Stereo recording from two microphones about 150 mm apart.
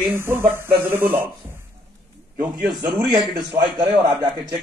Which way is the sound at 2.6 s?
10° right (ahead or behind).